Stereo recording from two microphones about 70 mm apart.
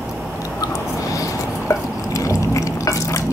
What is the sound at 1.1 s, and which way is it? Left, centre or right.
Drip, left.